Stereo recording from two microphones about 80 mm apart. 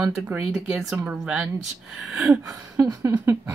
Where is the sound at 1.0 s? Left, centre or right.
Right.